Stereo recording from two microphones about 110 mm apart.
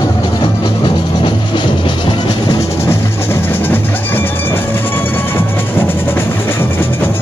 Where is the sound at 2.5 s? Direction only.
30° left (ahead or behind).